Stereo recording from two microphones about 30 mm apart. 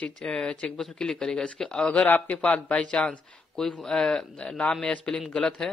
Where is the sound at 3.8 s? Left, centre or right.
Left.